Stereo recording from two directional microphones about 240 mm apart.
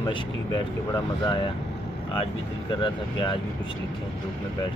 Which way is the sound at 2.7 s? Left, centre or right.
Centre.